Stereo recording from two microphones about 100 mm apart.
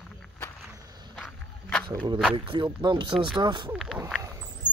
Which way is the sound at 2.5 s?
50° right (ahead or behind).